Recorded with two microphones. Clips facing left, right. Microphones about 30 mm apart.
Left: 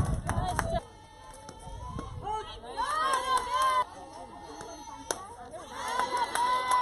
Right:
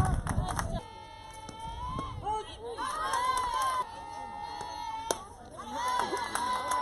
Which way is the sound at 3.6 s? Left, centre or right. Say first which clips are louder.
Left 4 dB; left.